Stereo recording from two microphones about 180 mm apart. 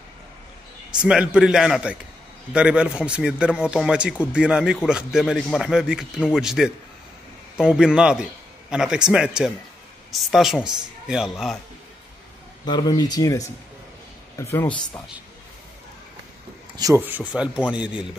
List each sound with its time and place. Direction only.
0.9 s a man's voice: 5° right (ahead or behind)
12.6 s speech: 25° left (ahead or behind)
16.7 s speech: 15° right (ahead or behind)